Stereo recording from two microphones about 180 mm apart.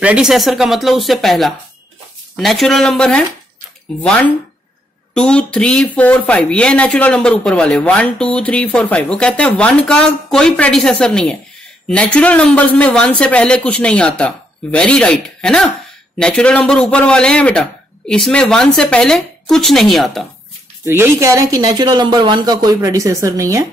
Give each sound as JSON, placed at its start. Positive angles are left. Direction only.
{"t": 0.0, "sound": "speech", "side_deg": -5}
{"t": 5.1, "sound": "speech", "side_deg": 5}
{"t": 20.8, "sound": "speech", "side_deg": -15}